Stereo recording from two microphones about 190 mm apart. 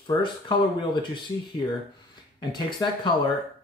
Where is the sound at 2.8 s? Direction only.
20° left (ahead or behind).